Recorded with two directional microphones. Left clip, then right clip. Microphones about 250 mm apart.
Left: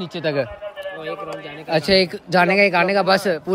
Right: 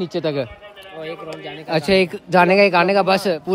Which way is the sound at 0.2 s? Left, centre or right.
Centre.